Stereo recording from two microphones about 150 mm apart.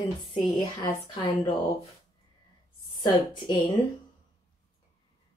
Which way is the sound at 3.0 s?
30° left (ahead or behind).